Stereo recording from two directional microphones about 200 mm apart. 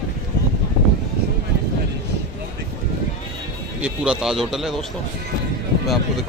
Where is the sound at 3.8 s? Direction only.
5° right (ahead or behind).